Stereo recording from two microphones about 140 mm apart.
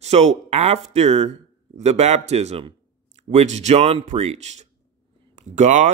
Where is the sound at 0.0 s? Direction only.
55° right (ahead or behind).